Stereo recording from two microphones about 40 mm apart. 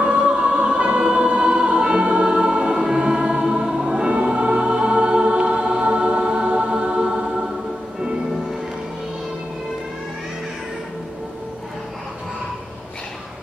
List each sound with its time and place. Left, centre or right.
0.0 s music: right
1.0 s choir: right
4.1 s music: right